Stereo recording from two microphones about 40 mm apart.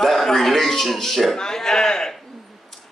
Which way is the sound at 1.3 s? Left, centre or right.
Centre.